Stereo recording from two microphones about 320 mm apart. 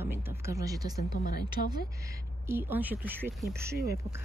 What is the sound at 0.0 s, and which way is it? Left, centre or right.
Speech, centre.